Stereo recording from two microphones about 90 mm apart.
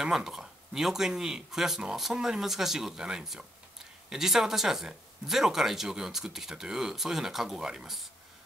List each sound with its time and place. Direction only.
0.0 s speech: 5° right (ahead or behind)